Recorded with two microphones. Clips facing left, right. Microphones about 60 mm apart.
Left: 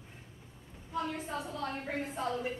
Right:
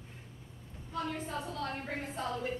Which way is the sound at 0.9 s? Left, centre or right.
Centre.